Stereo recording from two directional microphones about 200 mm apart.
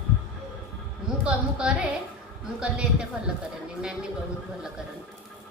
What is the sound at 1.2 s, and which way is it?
A woman's voice, 5° right (ahead or behind).